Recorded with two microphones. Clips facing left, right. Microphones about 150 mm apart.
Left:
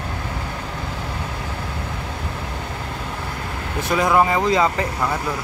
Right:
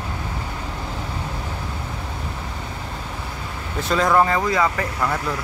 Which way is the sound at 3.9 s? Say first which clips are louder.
Even; 10° left (ahead or behind).